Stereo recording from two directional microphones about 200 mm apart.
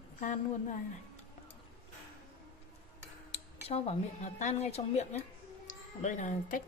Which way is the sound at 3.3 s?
30° left (ahead or behind).